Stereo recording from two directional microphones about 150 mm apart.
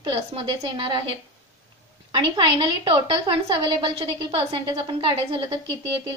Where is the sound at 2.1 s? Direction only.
35° right (ahead or behind).